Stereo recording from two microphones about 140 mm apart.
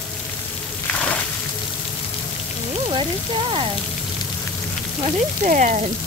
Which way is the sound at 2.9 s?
40° right (ahead or behind).